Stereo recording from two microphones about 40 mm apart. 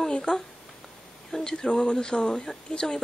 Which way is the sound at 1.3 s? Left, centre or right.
Centre.